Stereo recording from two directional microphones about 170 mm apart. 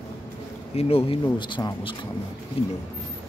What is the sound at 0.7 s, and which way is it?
Speech, 35° left (ahead or behind).